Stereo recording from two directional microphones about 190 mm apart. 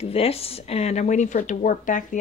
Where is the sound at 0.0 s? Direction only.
30° left (ahead or behind).